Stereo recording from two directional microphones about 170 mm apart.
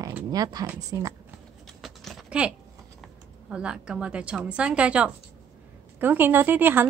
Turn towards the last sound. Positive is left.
turn(degrees=-10)  # may be behind; listen again after turning